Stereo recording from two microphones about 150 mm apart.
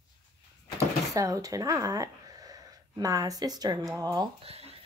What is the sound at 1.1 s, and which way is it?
Speech, 25° right (ahead or behind).